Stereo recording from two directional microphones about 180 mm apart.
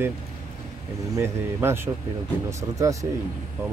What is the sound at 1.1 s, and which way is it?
Speech, 15° right (ahead or behind).